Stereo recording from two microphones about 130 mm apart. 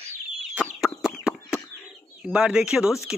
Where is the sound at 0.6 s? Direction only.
5° right (ahead or behind).